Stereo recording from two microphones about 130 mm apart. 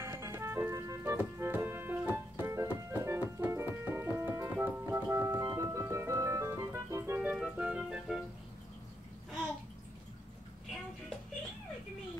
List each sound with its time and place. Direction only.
0.0 s music: 20° right (ahead or behind)
7.2 s music: 10° right (ahead or behind)